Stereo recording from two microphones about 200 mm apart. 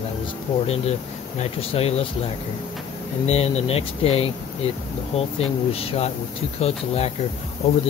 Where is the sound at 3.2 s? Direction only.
30° left (ahead or behind).